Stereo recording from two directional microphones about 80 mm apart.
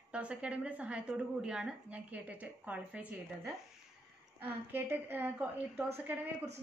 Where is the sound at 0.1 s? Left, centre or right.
Centre.